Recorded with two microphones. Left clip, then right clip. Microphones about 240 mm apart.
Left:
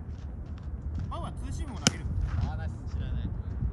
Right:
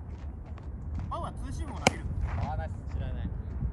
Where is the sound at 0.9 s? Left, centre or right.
Centre.